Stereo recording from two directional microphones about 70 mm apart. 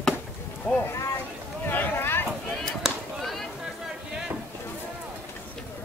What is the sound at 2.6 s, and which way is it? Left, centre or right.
Chop, centre.